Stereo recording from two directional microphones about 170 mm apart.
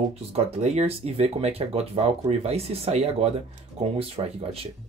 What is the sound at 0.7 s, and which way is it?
Speech, 35° right (ahead or behind).